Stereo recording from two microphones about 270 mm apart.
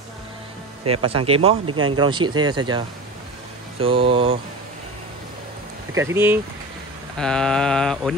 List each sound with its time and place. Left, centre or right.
1.0 s speech: right
1.7 s speech: right
2.0 s speech: centre
3.8 s speech: centre
5.9 s speech: centre
7.2 s mantra: centre